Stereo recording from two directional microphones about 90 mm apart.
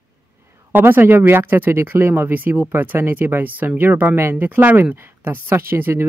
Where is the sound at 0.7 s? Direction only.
25° right (ahead or behind).